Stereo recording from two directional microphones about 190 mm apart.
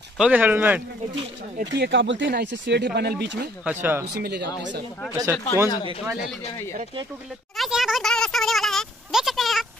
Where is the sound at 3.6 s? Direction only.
10° right (ahead or behind).